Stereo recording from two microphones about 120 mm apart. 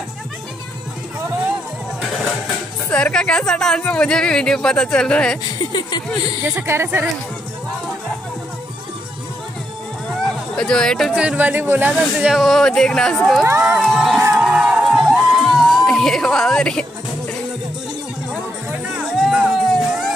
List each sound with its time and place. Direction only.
2.9 s speech: 10° left (ahead or behind)
5.7 s speech: 35° left (ahead or behind)
6.6 s a woman's voice: 20° right (ahead or behind)
10.2 s a sound: 5° left (ahead or behind)
11.1 s speech: 10° right (ahead or behind)
11.9 s speech: 5° right (ahead or behind)
13.5 s speech: 15° right (ahead or behind)
13.7 s speech: centre (ahead or behind)
14.3 s crowd: 10° right (ahead or behind)
19.1 s music: centre (ahead or behind)